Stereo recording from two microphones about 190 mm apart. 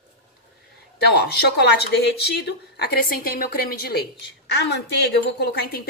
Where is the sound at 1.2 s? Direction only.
60° left (ahead or behind).